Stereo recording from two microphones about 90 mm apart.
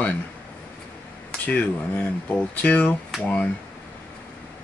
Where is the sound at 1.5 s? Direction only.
15° left (ahead or behind).